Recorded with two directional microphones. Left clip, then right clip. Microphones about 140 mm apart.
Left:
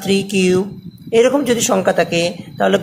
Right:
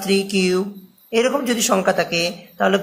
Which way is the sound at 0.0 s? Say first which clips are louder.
Left 3 dB; 50° left (ahead or behind).